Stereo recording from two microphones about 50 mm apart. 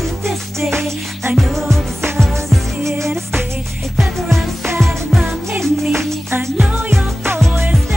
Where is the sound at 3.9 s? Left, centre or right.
Centre.